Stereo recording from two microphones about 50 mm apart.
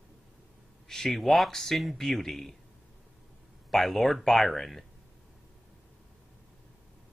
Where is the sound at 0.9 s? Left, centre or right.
Centre.